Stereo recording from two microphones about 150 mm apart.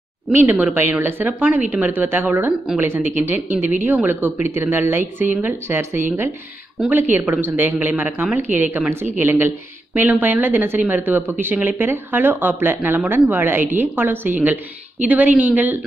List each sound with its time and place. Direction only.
0.3 s speech: 15° right (ahead or behind)